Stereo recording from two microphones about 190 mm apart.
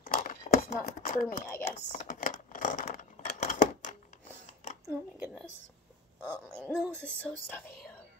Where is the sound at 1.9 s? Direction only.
45° left (ahead or behind).